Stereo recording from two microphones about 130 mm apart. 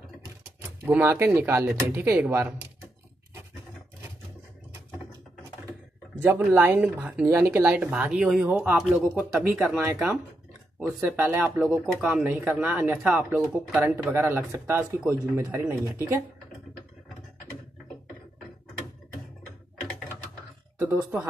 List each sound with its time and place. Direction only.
0.6 s speech: 15° right (ahead or behind)
6.2 s speech: 15° right (ahead or behind)
6.8 s speech: 5° right (ahead or behind)
12.9 s speech: centre (ahead or behind)
13.3 s speech: 15° right (ahead or behind)
20.8 s speech: 15° right (ahead or behind)